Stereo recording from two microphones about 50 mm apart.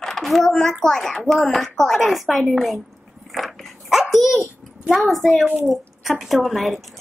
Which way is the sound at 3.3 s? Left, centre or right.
Centre.